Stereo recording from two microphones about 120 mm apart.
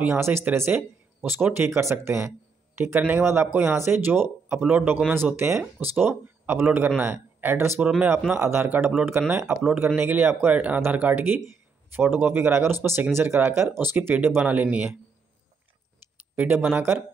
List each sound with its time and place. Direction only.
0.0 s speech: 20° right (ahead or behind)
16.3 s speech: 15° right (ahead or behind)